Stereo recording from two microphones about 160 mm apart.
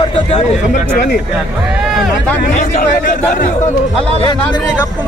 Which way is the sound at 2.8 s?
60° left (ahead or behind).